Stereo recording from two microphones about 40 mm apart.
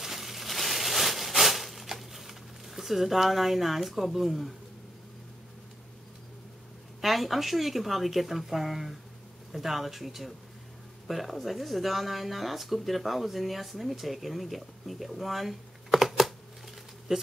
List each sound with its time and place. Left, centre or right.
0.0 s a sound: centre
7.0 s speech: centre
17.1 s speech: centre